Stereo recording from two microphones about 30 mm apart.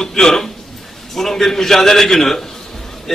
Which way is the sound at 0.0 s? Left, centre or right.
Centre.